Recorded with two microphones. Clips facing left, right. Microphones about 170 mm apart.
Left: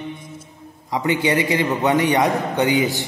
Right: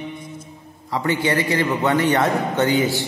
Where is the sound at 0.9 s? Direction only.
15° left (ahead or behind).